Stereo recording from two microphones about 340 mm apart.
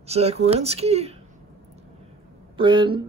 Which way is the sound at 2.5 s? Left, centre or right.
Centre.